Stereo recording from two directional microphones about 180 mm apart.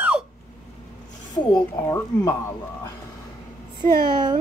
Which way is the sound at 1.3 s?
20° left (ahead or behind).